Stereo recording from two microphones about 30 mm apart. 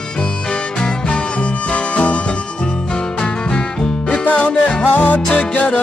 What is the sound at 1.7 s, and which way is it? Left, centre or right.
Music, left.